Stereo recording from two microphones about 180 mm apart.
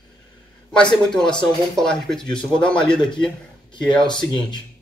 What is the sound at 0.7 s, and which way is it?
Speech, 5° left (ahead or behind).